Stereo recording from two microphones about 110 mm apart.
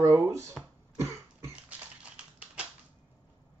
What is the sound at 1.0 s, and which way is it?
Cough, 25° right (ahead or behind).